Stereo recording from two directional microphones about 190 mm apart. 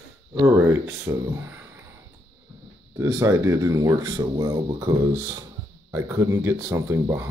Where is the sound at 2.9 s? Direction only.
15° right (ahead or behind).